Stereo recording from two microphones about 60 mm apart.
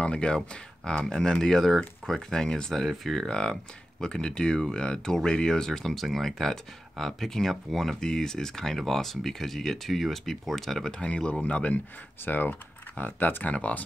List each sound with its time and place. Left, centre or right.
0.0 s speech: centre
3.3 s speech: centre
10.9 s speech: centre